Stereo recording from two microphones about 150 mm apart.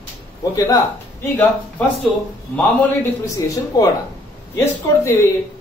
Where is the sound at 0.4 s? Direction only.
25° left (ahead or behind).